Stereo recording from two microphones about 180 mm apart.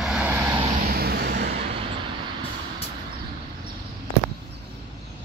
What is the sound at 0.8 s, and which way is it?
Vehicle, 60° right (ahead or behind).